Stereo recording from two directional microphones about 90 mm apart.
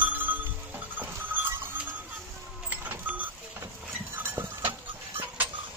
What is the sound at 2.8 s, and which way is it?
Vehicle, 20° right (ahead or behind).